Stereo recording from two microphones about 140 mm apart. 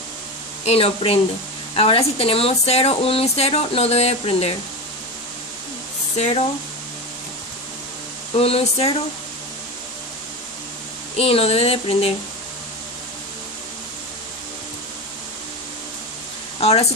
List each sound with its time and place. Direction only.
0.7 s speech: 45° left (ahead or behind)
6.1 s speech: 50° left (ahead or behind)
8.4 s speech: 45° left (ahead or behind)
11.1 s speech: 45° left (ahead or behind)
16.5 s a sound: 45° left (ahead or behind)